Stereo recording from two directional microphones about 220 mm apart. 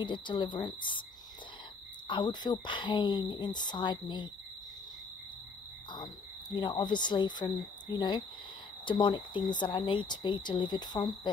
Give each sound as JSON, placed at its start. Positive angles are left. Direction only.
{"t": 0.0, "sound": "speech", "side_deg": 20}
{"t": 2.0, "sound": "speech", "side_deg": 20}
{"t": 6.5, "sound": "speech", "side_deg": 20}